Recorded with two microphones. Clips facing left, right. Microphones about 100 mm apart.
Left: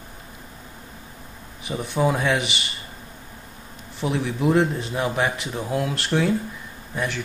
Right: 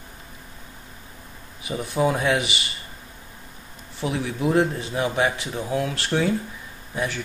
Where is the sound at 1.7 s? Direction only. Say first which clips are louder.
Even; centre (ahead or behind).